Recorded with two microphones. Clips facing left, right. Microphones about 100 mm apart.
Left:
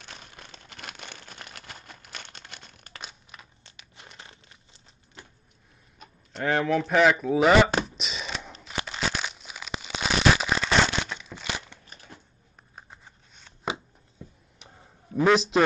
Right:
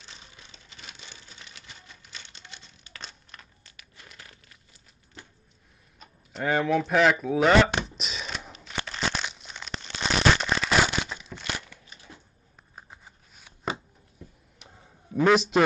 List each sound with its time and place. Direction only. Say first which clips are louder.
0.0 s a sound: left 4 dB; 55° left (ahead or behind)
3.0 s crumpling: left 1 dB; 5° left (ahead or behind)
3.6 s crumpling: left 2 dB; 25° left (ahead or behind)
5.9 s a sound: even; centre (ahead or behind)
8.7 s crumpling: even; 5° left (ahead or behind)
10.7 s crumpling: even; 5° right (ahead or behind)
11.7 s crunch: left 1 dB; 25° left (ahead or behind)
12.7 s shuffling cards: even; 5° right (ahead or behind)
15.2 s a man's voice: even; centre (ahead or behind)